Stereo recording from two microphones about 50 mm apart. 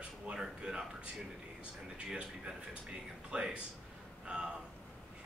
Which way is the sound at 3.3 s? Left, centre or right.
Right.